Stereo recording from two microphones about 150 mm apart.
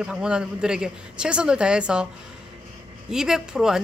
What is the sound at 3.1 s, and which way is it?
Speech, 5° right (ahead or behind).